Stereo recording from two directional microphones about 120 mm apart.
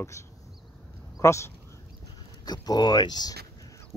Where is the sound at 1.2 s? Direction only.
25° left (ahead or behind).